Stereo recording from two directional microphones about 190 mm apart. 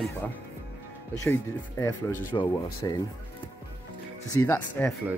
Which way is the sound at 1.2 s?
15° left (ahead or behind).